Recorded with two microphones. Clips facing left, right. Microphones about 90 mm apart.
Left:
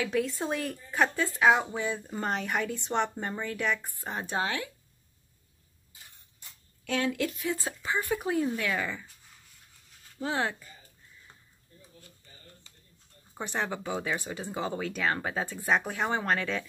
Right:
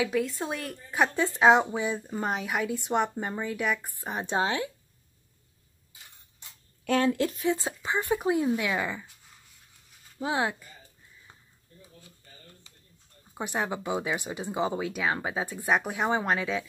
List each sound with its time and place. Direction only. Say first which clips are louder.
0.0 s speech: right 1 dB; centre (ahead or behind)
0.9 s speech: right 2 dB; 15° right (ahead or behind)
6.8 s speech: right 5 dB; 45° right (ahead or behind)
7.4 s speech: right 4 dB; 20° right (ahead or behind)
10.1 s speech: right 2 dB; 15° right (ahead or behind)
13.3 s speech: right 2 dB; 10° right (ahead or behind)